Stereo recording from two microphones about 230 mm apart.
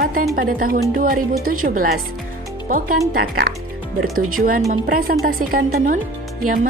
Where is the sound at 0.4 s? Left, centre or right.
Right.